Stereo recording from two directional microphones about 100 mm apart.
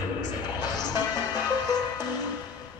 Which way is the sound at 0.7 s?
45° left (ahead or behind).